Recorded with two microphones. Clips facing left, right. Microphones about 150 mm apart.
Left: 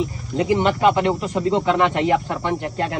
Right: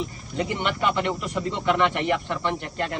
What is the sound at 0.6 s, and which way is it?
Speech, 35° left (ahead or behind).